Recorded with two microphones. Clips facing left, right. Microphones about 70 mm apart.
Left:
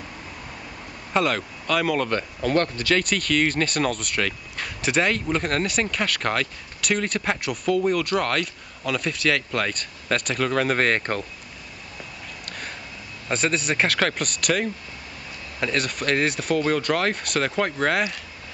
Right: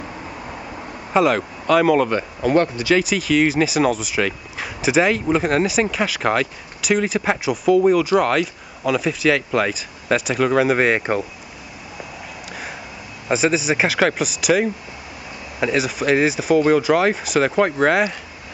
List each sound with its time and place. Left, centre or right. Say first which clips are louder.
0.0 s vehicle: right 6 dB; right
1.1 s speech: right 6 dB; centre
12.0 s a sound: right 5 dB; centre
13.3 s speech: right 6 dB; centre